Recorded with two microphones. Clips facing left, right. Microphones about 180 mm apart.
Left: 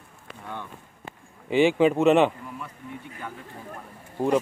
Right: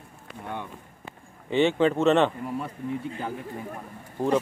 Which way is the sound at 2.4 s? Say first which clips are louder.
Right 8 dB; 25° right (ahead or behind).